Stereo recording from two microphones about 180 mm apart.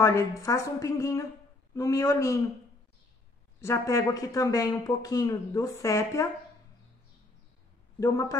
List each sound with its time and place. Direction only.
0.4 s a woman's voice: 15° left (ahead or behind)
3.6 s speech: 15° left (ahead or behind)
8.0 s speech: 20° left (ahead or behind)